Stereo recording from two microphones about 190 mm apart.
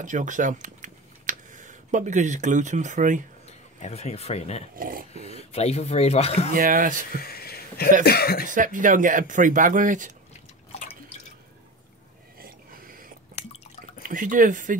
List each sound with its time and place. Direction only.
0.0 s speech: 40° right (ahead or behind)
3.4 s speech: 35° left (ahead or behind)
4.7 s speech: 45° right (ahead or behind)
5.1 s speech: 35° left (ahead or behind)
6.5 s speech: 45° right (ahead or behind)
7.2 s a sound: 55° left (ahead or behind)
8.0 s speech: 55° left (ahead or behind)
8.5 s speech: 45° right (ahead or behind)
10.7 s drip: 30° left (ahead or behind)
12.4 s a sound: 50° right (ahead or behind)
13.3 s drip: 35° left (ahead or behind)
14.0 s speech: 45° right (ahead or behind)